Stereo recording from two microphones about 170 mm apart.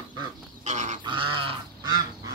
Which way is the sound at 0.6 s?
45° right (ahead or behind).